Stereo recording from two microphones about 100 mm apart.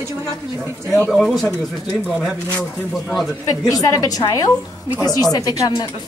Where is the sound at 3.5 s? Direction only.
35° left (ahead or behind).